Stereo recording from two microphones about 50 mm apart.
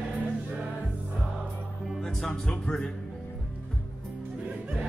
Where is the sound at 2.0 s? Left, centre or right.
Centre.